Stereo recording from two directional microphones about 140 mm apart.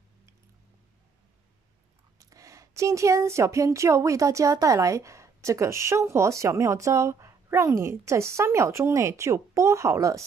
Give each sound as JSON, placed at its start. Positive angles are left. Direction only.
{"t": 2.1, "sound": "speech", "side_deg": -25}